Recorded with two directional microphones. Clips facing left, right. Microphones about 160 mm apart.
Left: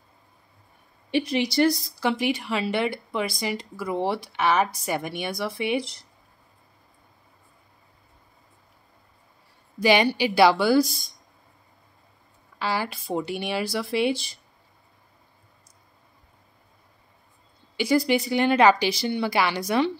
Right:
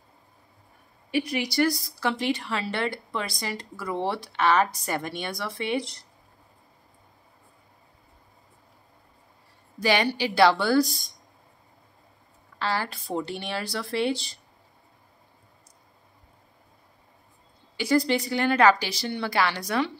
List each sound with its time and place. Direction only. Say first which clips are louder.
1.1 s speech: left 3 dB; 25° left (ahead or behind)
2.0 s speech: left 2 dB; 15° left (ahead or behind)
9.8 s speech: left 4 dB; 15° left (ahead or behind)
12.5 s speech: left 1 dB; 10° left (ahead or behind)
17.7 s speech: left 2 dB; 15° left (ahead or behind)